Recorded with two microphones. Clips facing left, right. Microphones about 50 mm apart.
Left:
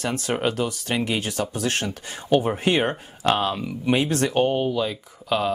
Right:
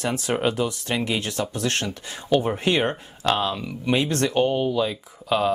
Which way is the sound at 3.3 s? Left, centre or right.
Left.